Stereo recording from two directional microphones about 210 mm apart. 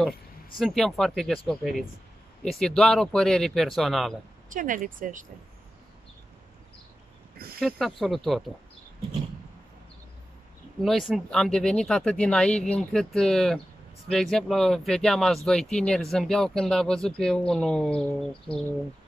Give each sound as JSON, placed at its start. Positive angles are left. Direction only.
{"t": 0.6, "sound": "speech", "side_deg": 0}
{"t": 4.5, "sound": "speech", "side_deg": -40}
{"t": 7.6, "sound": "speech", "side_deg": 0}
{"t": 10.8, "sound": "speech", "side_deg": 0}